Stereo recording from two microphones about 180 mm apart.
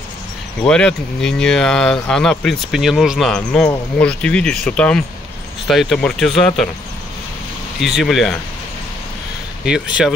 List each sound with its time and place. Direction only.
0.6 s speech: 5° left (ahead or behind)
7.8 s speech: centre (ahead or behind)
9.7 s speech: 5° right (ahead or behind)